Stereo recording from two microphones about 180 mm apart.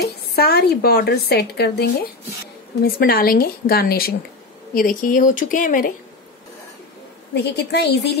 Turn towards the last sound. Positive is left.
turn(degrees=70)  # may be behind; listen again after turning